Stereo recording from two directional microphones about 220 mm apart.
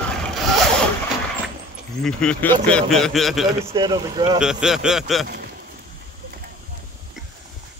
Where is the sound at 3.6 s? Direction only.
20° right (ahead or behind).